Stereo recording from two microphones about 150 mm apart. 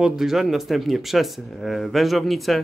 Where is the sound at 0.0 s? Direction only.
5° right (ahead or behind).